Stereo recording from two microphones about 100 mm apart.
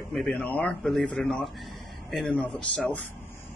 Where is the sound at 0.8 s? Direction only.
Centre (ahead or behind).